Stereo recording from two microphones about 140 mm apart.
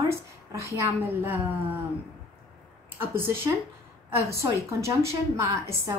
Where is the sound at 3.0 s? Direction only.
15° right (ahead or behind).